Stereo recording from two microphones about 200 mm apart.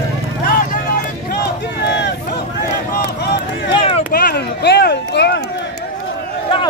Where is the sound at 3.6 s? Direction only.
30° left (ahead or behind).